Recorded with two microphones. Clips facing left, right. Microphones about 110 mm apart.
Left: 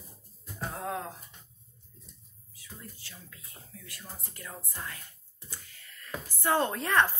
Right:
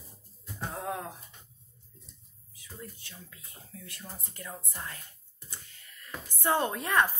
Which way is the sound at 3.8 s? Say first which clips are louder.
Even; 25° right (ahead or behind).